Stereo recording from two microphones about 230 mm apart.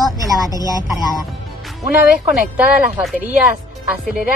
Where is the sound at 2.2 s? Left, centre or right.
Centre.